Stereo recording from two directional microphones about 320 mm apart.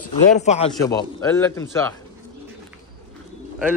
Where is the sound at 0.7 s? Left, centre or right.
Centre.